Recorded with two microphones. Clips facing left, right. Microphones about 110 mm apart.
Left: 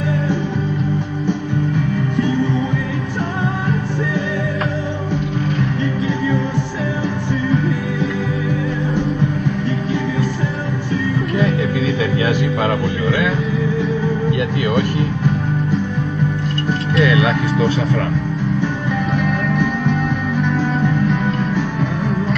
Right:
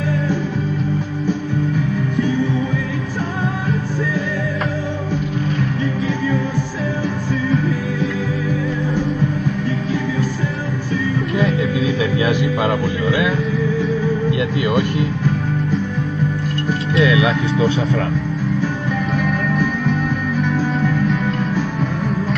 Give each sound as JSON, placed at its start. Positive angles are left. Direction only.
{"t": 12.0, "sound": "music", "side_deg": -15}
{"t": 14.6, "sound": "music", "side_deg": -20}
{"t": 17.0, "sound": "music", "side_deg": -15}